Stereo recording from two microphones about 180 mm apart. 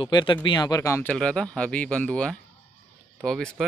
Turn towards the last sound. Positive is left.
turn(degrees=5)  # may be behind; listen again after turning